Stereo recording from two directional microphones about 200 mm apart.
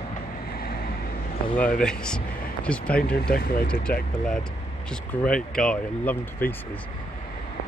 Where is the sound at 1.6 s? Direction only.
5° left (ahead or behind).